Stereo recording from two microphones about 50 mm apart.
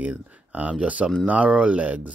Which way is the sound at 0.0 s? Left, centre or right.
Right.